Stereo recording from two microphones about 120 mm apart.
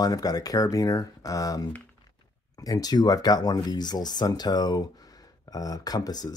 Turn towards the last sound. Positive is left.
turn(degrees=35)  # may be behind; listen again after turning